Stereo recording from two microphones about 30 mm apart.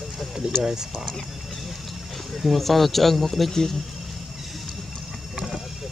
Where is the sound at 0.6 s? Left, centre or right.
Centre.